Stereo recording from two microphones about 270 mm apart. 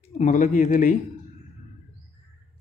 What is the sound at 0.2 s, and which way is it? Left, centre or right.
Speech, left.